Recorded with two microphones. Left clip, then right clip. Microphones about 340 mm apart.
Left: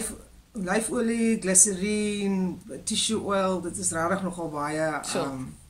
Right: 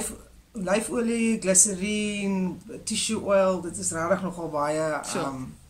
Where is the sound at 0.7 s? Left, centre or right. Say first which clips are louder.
Right 1 dB; centre.